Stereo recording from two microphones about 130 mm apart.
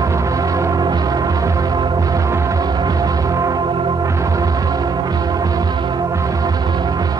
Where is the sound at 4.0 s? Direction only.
25° right (ahead or behind).